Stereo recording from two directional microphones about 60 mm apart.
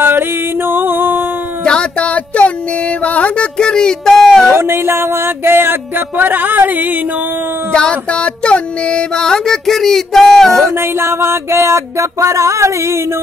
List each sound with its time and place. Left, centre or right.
0.7 s music: right
1.6 s a sound: centre
3.0 s speech: left
4.6 s music: right
7.7 s music: centre
10.6 s music: right